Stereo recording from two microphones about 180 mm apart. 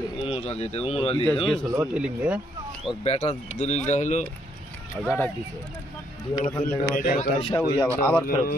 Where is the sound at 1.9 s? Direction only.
5° right (ahead or behind).